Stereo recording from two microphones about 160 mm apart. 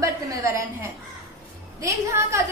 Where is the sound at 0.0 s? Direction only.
20° right (ahead or behind).